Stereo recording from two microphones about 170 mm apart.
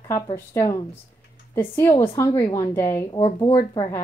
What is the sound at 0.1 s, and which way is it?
A woman's voice, 15° left (ahead or behind).